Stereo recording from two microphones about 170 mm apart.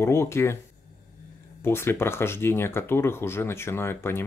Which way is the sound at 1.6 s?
15° left (ahead or behind).